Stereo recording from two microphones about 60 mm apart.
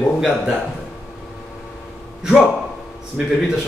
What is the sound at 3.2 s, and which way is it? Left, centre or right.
Speech, centre.